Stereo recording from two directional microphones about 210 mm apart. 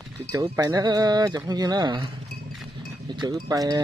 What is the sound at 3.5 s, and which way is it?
Speech, 15° right (ahead or behind).